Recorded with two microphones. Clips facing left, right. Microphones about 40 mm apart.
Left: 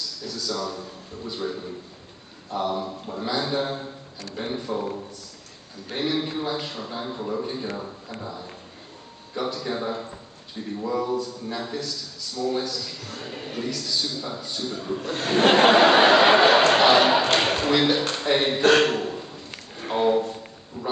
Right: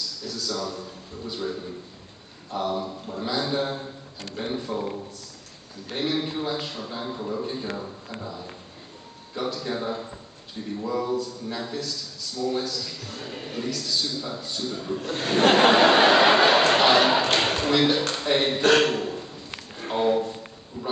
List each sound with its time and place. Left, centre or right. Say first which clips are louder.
0.2 s a man's voice: left 1 dB; centre
5.9 s a man's voice: left 1 dB; centre
19.8 s a sound: left 1 dB; centre
20.8 s pig: left 1 dB; centre